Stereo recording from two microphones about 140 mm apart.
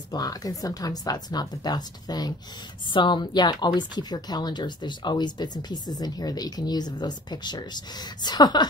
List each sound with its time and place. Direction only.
0.1 s a woman's voice: 25° left (ahead or behind)